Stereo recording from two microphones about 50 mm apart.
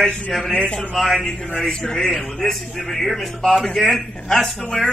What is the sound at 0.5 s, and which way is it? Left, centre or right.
Speech, left.